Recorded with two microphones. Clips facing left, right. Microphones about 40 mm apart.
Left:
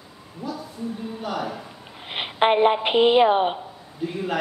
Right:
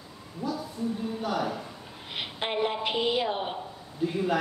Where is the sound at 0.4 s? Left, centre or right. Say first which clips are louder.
Even; centre.